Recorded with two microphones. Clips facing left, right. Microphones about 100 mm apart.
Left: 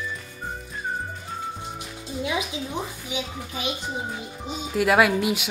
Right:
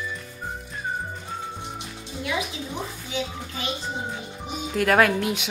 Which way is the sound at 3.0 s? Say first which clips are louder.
Right 1 dB; 15° left (ahead or behind).